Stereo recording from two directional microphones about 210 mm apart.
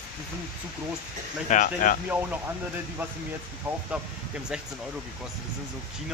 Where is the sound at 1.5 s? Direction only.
40° left (ahead or behind).